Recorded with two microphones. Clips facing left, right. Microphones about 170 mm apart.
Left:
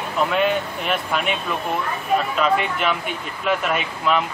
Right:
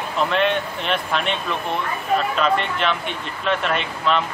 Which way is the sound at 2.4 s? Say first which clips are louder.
Even; 5° left (ahead or behind).